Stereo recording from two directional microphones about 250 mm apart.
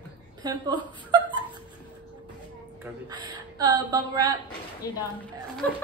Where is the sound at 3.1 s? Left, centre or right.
Centre.